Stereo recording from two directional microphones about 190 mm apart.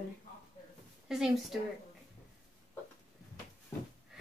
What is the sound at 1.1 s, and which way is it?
Speech, centre (ahead or behind).